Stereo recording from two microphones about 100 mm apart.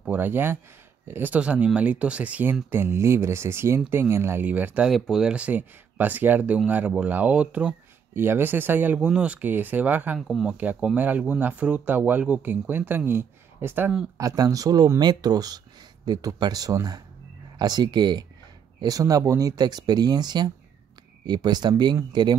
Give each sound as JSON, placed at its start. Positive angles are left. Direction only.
{"t": 0.0, "sound": "speech", "side_deg": -20}
{"t": 4.8, "sound": "speech", "side_deg": 0}
{"t": 8.1, "sound": "speech", "side_deg": -25}
{"t": 10.2, "sound": "speech", "side_deg": 0}
{"t": 10.6, "sound": "speech", "side_deg": -15}
{"t": 14.1, "sound": "speech", "side_deg": -35}